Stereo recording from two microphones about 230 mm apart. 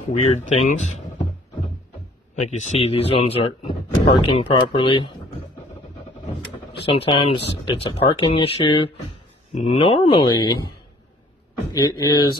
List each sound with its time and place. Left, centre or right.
0.0 s speech: left
2.3 s speech: left
6.9 s speech: left
11.7 s speech: centre